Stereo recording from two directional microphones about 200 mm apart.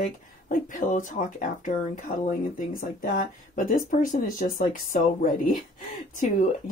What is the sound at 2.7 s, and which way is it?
Speech, 45° left (ahead or behind).